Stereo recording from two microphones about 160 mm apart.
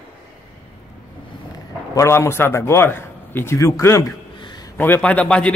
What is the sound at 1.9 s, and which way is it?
A man's voice, 15° left (ahead or behind).